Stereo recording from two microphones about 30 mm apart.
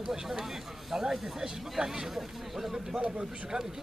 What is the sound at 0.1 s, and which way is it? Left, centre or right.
Speech, centre.